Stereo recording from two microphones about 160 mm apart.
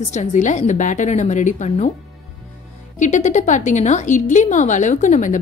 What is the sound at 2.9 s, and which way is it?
A woman's voice, 50° left (ahead or behind).